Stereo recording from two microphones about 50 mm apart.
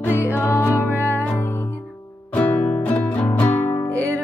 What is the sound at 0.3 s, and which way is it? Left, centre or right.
Music, left.